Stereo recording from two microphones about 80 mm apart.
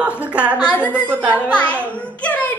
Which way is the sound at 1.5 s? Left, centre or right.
Centre.